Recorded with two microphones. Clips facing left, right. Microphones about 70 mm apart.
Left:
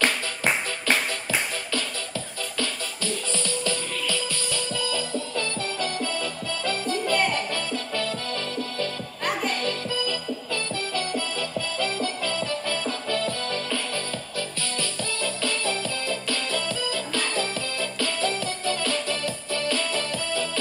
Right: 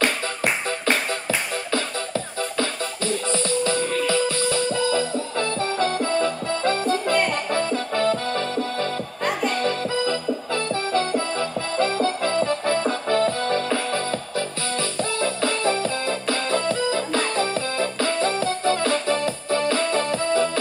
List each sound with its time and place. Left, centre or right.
1.7 s music: right